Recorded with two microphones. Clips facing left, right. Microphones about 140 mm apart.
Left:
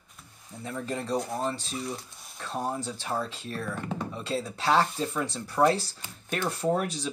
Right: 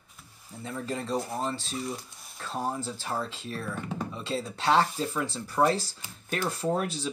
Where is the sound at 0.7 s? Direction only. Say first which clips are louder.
Left 1 dB; centre (ahead or behind).